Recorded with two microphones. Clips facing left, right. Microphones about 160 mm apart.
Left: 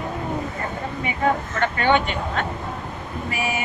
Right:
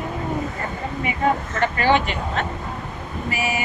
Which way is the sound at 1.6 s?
5° right (ahead or behind).